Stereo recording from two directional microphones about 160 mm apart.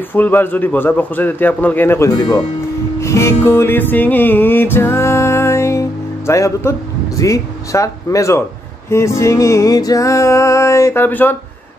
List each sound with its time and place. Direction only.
0.1 s music: 10° left (ahead or behind)
7.2 s speech: 20° left (ahead or behind)
8.9 s music: 20° left (ahead or behind)